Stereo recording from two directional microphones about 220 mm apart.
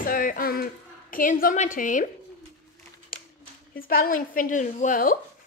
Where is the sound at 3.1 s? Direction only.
40° left (ahead or behind).